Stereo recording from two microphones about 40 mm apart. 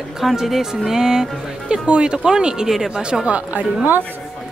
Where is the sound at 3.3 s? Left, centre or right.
Right.